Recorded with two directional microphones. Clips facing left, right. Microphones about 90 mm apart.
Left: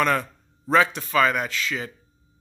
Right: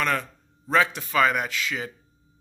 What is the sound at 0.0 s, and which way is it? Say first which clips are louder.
A man's voice: left 4 dB; 5° left (ahead or behind).